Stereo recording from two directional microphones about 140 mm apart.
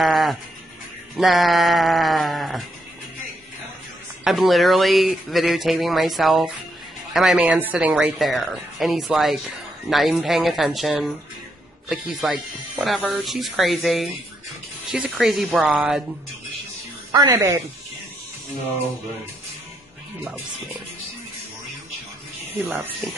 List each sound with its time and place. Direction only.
0.0 s music: centre (ahead or behind)
1.1 s speech: centre (ahead or behind)
4.2 s speech: centre (ahead or behind)
17.1 s a woman's voice: 25° right (ahead or behind)